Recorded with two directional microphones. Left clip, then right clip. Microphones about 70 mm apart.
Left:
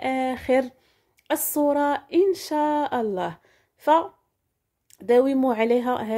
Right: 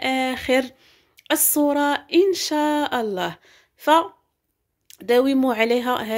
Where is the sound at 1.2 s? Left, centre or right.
Left.